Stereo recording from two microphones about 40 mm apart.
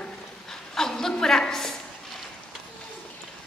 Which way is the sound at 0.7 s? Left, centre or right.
Centre.